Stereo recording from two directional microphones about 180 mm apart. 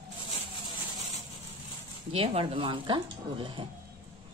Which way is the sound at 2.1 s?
30° right (ahead or behind).